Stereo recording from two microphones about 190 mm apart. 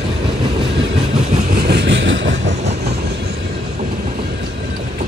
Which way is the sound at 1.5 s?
55° right (ahead or behind).